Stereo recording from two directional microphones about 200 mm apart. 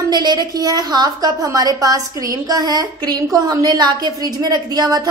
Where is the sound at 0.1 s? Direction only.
20° right (ahead or behind).